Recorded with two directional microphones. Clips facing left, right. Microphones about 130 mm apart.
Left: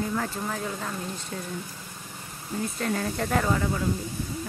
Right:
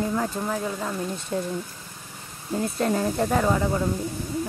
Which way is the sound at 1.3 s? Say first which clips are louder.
Right 11 dB; 35° right (ahead or behind).